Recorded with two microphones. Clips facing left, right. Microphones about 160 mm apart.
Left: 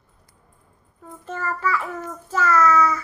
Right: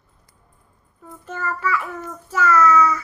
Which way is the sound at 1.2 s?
30° left (ahead or behind).